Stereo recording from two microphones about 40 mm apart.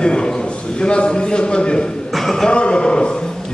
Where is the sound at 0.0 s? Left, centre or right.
Left.